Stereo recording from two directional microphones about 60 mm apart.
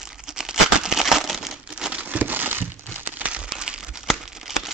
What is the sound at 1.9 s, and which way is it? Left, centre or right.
Crumpling, right.